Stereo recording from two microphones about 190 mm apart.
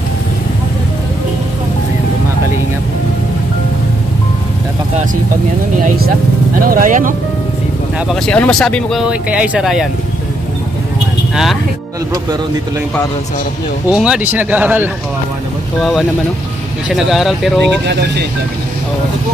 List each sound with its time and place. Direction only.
6.6 s speech: 45° right (ahead or behind)
8.1 s speech: 5° left (ahead or behind)
13.8 s speech: 5° right (ahead or behind)